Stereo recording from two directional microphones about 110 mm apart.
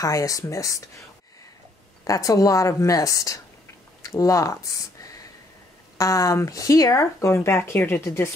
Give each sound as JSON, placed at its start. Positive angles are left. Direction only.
{"t": 0.0, "sound": "a woman's voice", "side_deg": 30}
{"t": 2.0, "sound": "a woman's voice", "side_deg": 30}